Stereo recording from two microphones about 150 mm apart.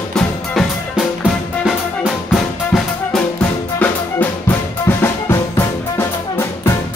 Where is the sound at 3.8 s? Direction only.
10° left (ahead or behind).